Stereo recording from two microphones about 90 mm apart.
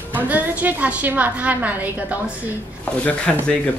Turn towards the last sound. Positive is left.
turn(degrees=15)  # may be behind; listen again after turning